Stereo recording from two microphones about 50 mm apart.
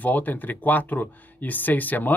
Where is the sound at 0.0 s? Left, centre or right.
Left.